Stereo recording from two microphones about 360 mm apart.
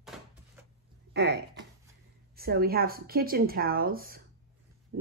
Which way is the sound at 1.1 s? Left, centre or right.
Right.